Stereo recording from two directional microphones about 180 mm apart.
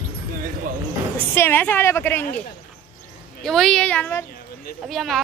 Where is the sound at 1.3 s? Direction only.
10° left (ahead or behind).